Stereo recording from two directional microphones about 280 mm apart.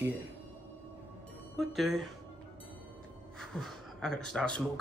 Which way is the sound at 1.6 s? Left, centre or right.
Centre.